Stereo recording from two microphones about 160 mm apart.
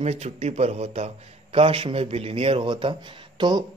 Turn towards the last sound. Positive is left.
turn(degrees=-25)  # may be behind; listen again after turning